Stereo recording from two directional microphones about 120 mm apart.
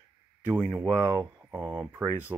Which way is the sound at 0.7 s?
20° right (ahead or behind).